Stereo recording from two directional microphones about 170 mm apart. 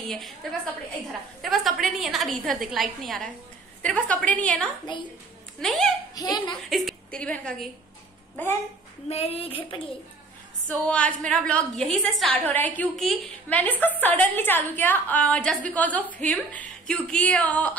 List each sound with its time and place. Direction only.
0.1 s a woman's voice: centre (ahead or behind)
4.9 s speech: 25° left (ahead or behind)
5.6 s a woman's voice: centre (ahead or behind)
6.1 s speech: 25° left (ahead or behind)
6.7 s a woman's voice: centre (ahead or behind)
9.1 s speech: 35° left (ahead or behind)
10.9 s a woman's voice: 5° left (ahead or behind)